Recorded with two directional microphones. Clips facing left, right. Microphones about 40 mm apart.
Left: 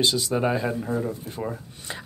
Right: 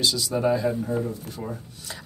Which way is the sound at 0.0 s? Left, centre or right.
Left.